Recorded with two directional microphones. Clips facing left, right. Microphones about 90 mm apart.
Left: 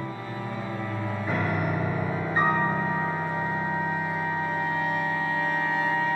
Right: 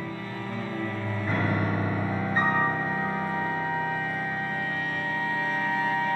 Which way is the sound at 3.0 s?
15° left (ahead or behind).